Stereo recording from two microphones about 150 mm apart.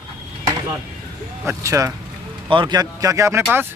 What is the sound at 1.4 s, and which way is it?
Speech, 20° right (ahead or behind).